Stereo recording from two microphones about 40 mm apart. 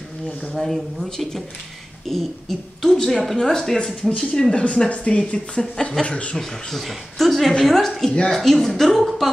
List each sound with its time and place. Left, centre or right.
0.6 s speech: centre
4.8 s speech: left
5.8 s speech: centre
6.0 s speech: left
6.8 s speech: centre